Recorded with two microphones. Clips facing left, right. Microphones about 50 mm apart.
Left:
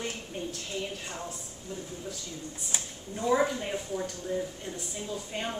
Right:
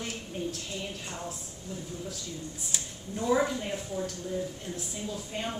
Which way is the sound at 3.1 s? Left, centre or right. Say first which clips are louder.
Left 1 dB; centre.